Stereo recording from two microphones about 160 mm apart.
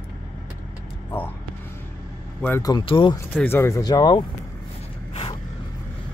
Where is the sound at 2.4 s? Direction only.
10° left (ahead or behind).